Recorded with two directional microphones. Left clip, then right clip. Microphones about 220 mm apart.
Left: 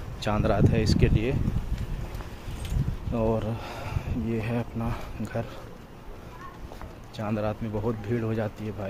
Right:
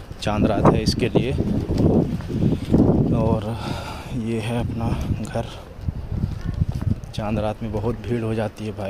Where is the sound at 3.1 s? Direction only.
15° right (ahead or behind).